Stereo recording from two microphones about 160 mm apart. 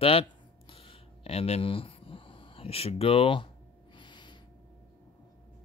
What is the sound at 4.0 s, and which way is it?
Snort, 30° left (ahead or behind).